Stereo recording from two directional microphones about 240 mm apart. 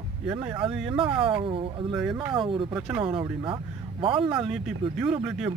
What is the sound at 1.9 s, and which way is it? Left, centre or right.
Speech, centre.